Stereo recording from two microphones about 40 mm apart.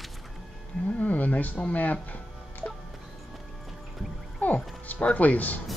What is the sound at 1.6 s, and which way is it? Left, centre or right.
Music, left.